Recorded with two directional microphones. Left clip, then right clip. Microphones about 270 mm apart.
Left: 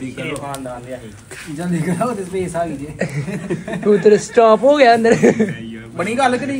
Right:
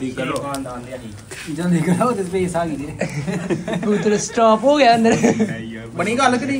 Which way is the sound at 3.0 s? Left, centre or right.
Left.